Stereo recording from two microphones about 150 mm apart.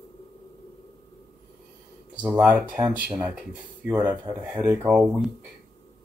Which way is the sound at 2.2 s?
10° right (ahead or behind).